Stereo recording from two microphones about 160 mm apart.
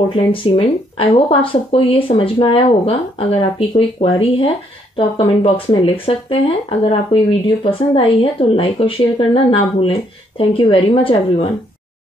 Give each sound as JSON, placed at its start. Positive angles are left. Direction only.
{"t": 0.1, "sound": "speech", "side_deg": 35}